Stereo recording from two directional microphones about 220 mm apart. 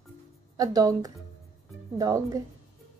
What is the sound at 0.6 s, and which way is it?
A woman's voice, 15° right (ahead or behind).